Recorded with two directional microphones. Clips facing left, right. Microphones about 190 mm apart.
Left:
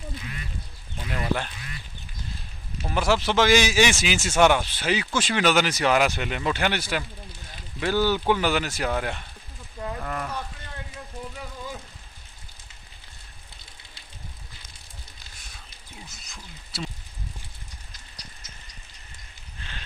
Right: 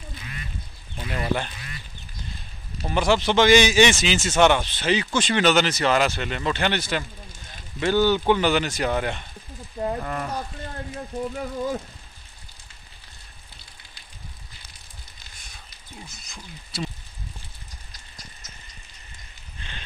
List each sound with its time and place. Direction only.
1.1 s speech: centre (ahead or behind)
2.8 s speech: centre (ahead or behind)
10.3 s speech: 45° right (ahead or behind)
16.1 s speech: centre (ahead or behind)
19.6 s a sound: centre (ahead or behind)